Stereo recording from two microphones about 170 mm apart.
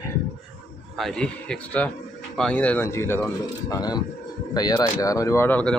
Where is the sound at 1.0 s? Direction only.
5° left (ahead or behind).